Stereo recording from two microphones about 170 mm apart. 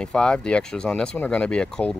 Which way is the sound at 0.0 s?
5° left (ahead or behind).